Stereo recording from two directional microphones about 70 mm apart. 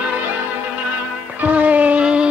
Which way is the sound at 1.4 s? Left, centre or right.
Right.